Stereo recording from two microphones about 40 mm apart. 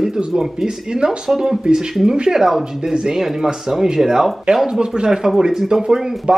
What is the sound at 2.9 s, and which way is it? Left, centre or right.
Speech, centre.